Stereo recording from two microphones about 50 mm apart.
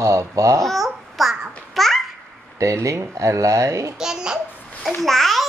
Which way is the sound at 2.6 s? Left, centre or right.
Right.